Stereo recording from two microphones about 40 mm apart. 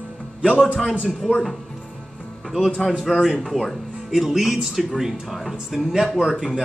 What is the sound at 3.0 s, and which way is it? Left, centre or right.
A man's voice, centre.